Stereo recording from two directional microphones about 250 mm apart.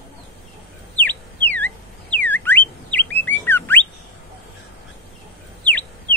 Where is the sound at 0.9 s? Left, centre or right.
Centre.